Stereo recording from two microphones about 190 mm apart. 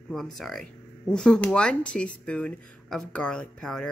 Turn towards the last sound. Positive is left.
turn(degrees=5)  # may be behind; listen again after turning